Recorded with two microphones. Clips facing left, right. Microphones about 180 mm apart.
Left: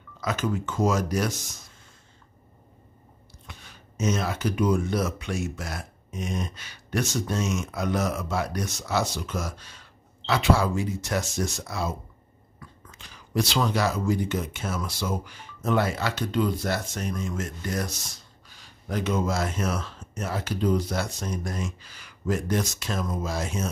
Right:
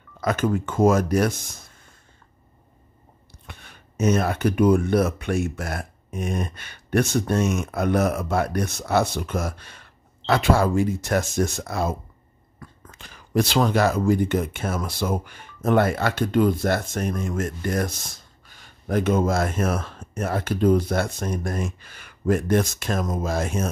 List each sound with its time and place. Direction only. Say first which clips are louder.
0.2 s speech: right 5 dB; 55° right (ahead or behind)
3.4 s speech: right 2 dB; 60° right (ahead or behind)